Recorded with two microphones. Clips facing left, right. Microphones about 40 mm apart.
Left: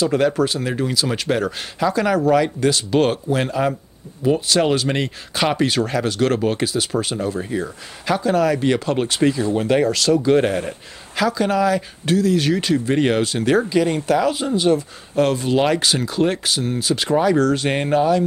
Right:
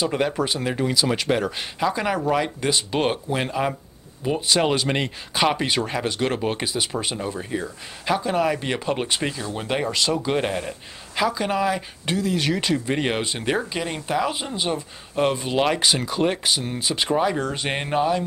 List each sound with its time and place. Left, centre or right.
0.0 s speech: centre